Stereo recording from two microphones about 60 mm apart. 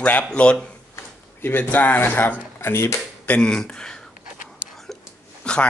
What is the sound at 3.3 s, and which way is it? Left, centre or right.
Speech, centre.